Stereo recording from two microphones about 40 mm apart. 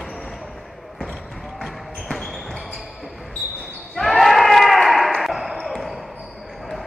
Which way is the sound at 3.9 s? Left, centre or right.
Centre.